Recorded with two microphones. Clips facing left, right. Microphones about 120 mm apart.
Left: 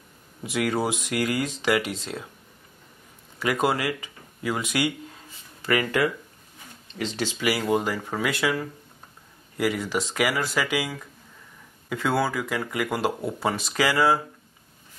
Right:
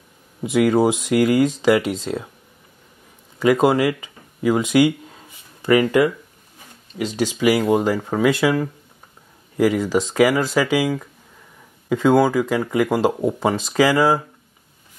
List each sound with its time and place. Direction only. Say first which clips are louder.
0.4 s speech: right 9 dB; 20° right (ahead or behind)
3.3 s speech: right 8 dB; 25° right (ahead or behind)